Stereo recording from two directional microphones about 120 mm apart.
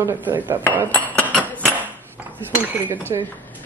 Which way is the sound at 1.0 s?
10° left (ahead or behind).